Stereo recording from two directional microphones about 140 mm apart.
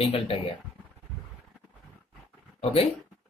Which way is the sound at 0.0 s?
40° left (ahead or behind).